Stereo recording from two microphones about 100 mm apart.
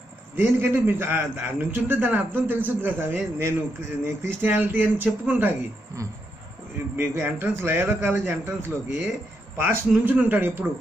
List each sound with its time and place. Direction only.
0.4 s a man's voice: 20° right (ahead or behind)
7.0 s a man's voice: 20° right (ahead or behind)